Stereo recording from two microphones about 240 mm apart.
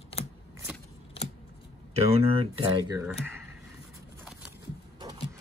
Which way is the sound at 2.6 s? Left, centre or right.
Centre.